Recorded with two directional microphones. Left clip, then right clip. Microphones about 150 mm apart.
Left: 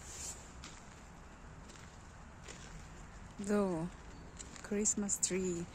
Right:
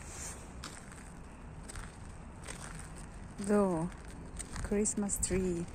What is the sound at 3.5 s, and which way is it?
Speech, 25° left (ahead or behind).